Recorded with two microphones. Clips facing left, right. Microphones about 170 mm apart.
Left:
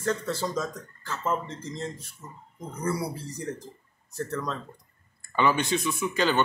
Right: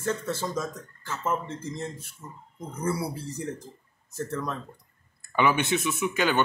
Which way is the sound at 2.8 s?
25° right (ahead or behind).